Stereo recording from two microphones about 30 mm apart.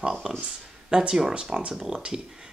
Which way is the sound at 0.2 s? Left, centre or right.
Right.